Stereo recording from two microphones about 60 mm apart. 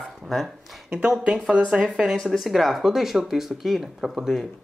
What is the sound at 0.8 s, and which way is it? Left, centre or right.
A woman's voice, centre.